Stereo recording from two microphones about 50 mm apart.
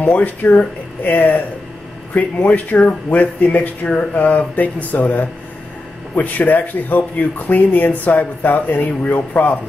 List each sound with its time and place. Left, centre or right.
0.0 s speech: left